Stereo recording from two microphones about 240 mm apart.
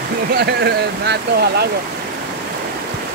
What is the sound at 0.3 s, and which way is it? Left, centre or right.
Speech, right.